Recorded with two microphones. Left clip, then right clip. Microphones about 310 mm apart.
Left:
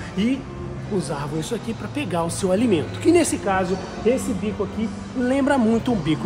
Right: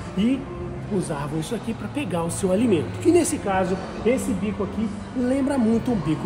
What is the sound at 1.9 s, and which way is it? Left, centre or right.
Speech, centre.